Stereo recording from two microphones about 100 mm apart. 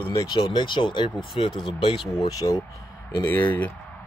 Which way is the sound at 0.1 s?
40° left (ahead or behind).